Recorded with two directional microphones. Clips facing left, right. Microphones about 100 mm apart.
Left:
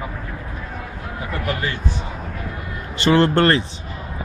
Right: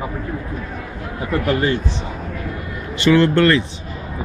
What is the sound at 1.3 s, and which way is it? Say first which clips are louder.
Speech: right 8 dB; 30° right (ahead or behind).